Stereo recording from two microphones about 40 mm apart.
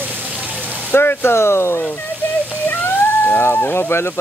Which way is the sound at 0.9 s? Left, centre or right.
Left.